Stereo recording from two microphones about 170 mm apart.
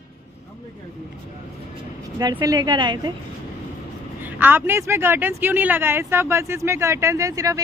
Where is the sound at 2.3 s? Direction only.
20° right (ahead or behind).